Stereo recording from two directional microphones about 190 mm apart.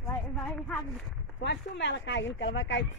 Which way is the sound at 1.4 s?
65° left (ahead or behind).